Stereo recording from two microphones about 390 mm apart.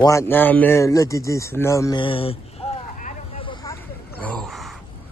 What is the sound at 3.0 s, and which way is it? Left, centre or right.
Vehicle, centre.